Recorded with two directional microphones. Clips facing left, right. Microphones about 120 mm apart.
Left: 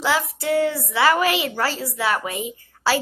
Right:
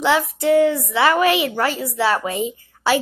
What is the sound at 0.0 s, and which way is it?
A woman's voice, 20° right (ahead or behind).